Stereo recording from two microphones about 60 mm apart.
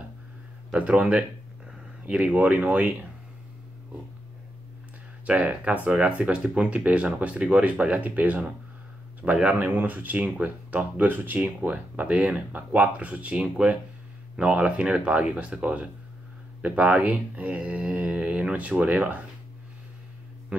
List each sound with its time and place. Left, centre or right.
0.7 s speech: right
5.2 s speech: right
9.2 s a man's voice: centre
9.6 s speech: right